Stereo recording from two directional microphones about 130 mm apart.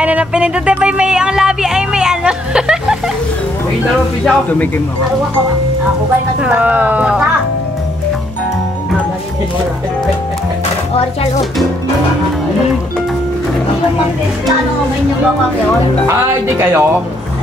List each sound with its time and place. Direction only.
0.0 s music: 10° right (ahead or behind)
4.2 s a man's voice: 10° left (ahead or behind)
6.4 s speech: 10° right (ahead or behind)
16.1 s speech: 20° right (ahead or behind)